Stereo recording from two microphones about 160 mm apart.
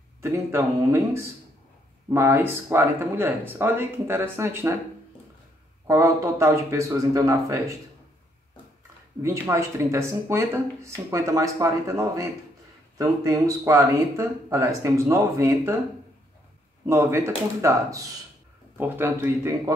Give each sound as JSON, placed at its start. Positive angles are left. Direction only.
{"t": 0.2, "sound": "speech", "side_deg": -15}
{"t": 2.0, "sound": "speech", "side_deg": -15}
{"t": 5.9, "sound": "speech", "side_deg": -20}
{"t": 9.2, "sound": "speech", "side_deg": -20}
{"t": 16.8, "sound": "speech", "side_deg": -15}